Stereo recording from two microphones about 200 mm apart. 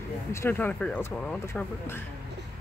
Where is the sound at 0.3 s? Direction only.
10° left (ahead or behind).